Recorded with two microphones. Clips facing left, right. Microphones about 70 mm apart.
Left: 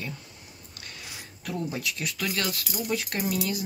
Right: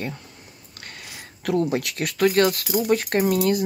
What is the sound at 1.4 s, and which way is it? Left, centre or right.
Speech, right.